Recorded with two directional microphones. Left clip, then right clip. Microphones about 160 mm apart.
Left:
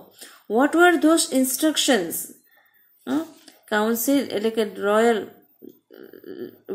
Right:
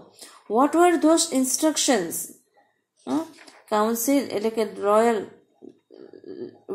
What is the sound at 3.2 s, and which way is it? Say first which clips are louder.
A woman's voice: left 1 dB; centre (ahead or behind).